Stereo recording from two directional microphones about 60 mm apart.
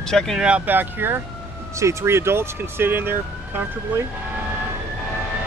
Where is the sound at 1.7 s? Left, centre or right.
Right.